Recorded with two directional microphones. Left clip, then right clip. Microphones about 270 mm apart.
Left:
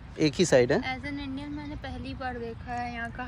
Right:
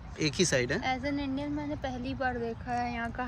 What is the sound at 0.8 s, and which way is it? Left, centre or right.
Speech, right.